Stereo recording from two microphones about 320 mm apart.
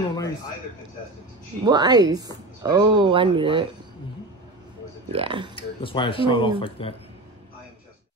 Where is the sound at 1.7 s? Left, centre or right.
Centre.